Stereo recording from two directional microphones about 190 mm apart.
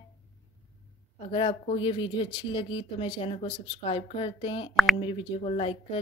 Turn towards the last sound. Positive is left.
turn(degrees=30)  # may be behind; listen again after turning